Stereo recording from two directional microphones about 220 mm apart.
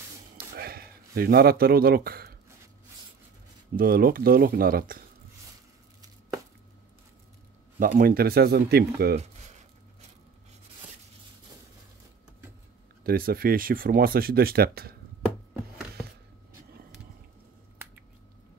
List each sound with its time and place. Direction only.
0.6 s speech: 45° right (ahead or behind)
3.7 s speech: 40° right (ahead or behind)
8.0 s speech: 40° right (ahead or behind)
9.2 s a sound: 30° right (ahead or behind)
13.0 s speech: 40° right (ahead or behind)